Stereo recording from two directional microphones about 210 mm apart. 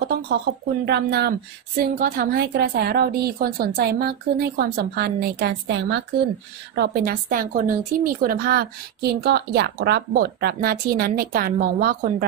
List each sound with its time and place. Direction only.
0.8 s a woman's voice: 50° right (ahead or behind)